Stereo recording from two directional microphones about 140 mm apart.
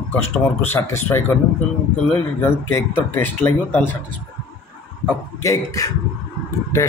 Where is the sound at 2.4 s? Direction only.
15° left (ahead or behind).